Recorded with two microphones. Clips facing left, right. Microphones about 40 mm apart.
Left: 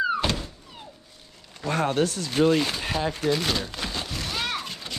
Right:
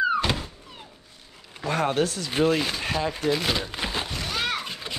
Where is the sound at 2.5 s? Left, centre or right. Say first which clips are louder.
Left 1 dB; centre.